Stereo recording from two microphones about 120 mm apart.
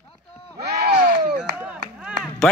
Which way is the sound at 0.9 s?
10° right (ahead or behind).